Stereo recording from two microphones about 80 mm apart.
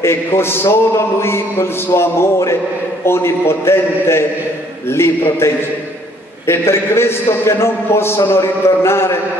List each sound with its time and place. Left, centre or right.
0.0 s a man's voice: left